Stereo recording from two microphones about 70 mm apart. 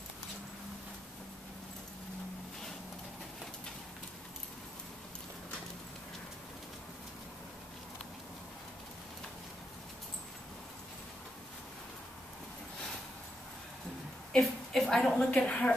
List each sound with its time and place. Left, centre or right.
14.4 s a woman's voice: centre
15.3 s speech: centre